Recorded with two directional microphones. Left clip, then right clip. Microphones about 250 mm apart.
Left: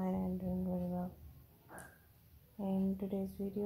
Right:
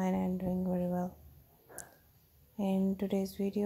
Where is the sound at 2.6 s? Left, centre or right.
Right.